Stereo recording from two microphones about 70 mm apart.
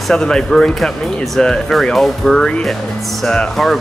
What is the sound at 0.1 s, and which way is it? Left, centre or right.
Speech, centre.